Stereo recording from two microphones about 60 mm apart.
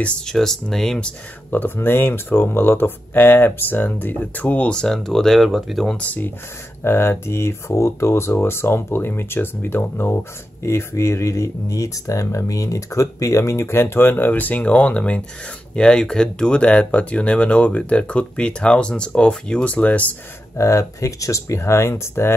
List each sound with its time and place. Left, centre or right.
0.3 s speech: centre
1.5 s speech: left
4.7 s speech: centre
5.9 s speech: left
6.8 s speech: left
20.5 s speech: left
21.5 s speech: left